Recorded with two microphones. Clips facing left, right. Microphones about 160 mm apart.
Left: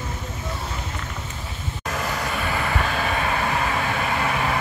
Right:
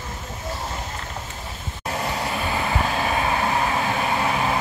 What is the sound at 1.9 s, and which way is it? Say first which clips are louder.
Vehicle: right 1 dB; 25° right (ahead or behind).